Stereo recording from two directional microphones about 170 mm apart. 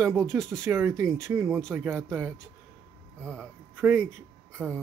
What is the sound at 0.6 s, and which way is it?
Speech, 15° right (ahead or behind).